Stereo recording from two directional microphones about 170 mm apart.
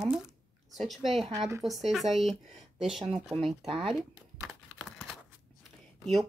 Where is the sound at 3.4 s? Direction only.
30° right (ahead or behind).